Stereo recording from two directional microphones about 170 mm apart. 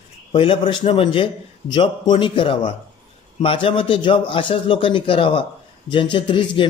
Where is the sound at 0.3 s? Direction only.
30° left (ahead or behind).